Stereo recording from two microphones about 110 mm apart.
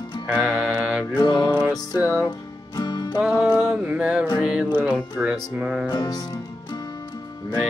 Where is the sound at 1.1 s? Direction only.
40° left (ahead or behind).